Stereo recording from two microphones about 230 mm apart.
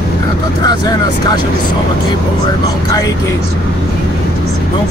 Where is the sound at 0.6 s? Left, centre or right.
Centre.